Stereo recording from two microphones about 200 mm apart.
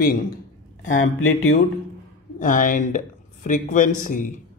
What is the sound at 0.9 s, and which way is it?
Speech, 80° left.